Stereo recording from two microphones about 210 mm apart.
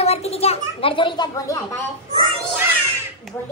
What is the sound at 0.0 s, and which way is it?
A child's voice, 30° left (ahead or behind).